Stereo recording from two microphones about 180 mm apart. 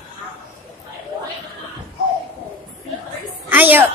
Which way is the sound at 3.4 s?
10° right (ahead or behind).